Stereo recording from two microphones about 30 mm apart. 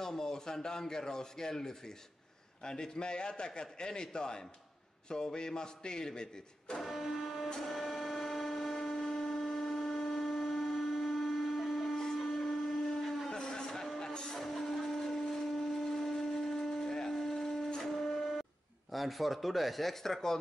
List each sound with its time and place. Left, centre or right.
0.0 s a man's voice: left
6.8 s printer: centre
7.6 s vehicle: centre
11.1 s a sound: centre
11.9 s a sound: centre
13.9 s music: left
14.9 s blender: centre
15.3 s shofar: centre
17.8 s wind instrument: centre
18.9 s speech: centre